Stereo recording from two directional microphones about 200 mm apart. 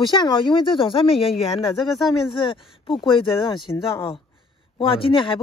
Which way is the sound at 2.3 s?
25° left (ahead or behind).